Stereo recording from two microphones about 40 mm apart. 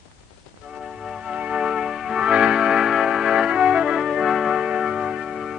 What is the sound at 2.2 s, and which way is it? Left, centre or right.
Music, right.